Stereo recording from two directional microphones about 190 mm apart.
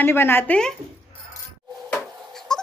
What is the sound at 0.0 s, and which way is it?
Speech, 10° left (ahead or behind).